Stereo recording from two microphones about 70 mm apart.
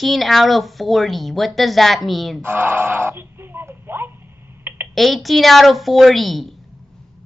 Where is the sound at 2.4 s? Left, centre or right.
Right.